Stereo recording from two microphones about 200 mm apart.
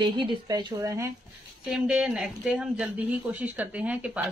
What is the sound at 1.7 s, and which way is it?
Speech, 5° right (ahead or behind).